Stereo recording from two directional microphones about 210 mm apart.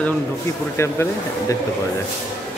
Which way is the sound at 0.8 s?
15° left (ahead or behind).